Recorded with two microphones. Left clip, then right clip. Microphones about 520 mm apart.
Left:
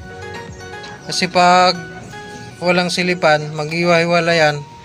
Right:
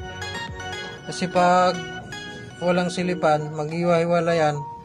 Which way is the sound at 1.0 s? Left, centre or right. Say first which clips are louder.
Left 7 dB; right.